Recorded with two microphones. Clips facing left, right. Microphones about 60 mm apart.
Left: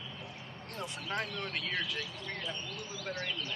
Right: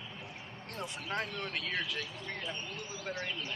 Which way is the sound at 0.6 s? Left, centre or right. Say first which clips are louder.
Even; centre.